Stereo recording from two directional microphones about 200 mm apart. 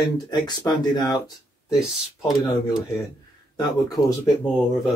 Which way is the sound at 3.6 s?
20° left (ahead or behind).